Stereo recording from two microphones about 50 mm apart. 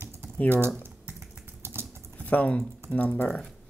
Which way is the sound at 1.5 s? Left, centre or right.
Right.